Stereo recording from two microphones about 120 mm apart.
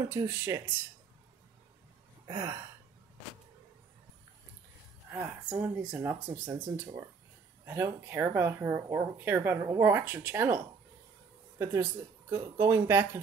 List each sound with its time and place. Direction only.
0.1 s speech: 20° right (ahead or behind)
2.2 s a sound: 25° right (ahead or behind)
5.1 s speech: 15° right (ahead or behind)